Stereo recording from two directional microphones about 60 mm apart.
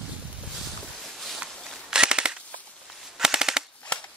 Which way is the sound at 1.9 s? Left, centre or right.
Centre.